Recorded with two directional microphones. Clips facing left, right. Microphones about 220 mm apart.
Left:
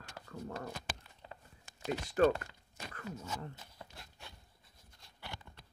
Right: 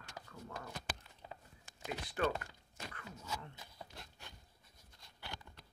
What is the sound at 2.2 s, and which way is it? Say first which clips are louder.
Speech: left 8 dB; 35° left (ahead or behind).